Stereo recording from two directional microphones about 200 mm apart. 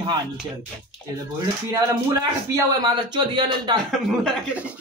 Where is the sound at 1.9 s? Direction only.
15° right (ahead or behind).